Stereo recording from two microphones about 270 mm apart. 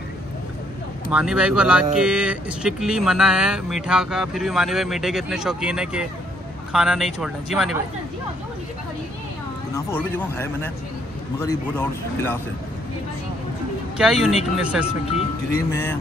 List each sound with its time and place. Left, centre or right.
1.1 s speech: centre
9.8 s speech: centre
13.9 s speech: centre
15.7 s speech: centre